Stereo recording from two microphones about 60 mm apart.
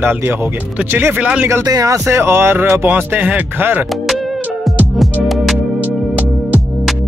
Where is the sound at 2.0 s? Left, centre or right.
Right.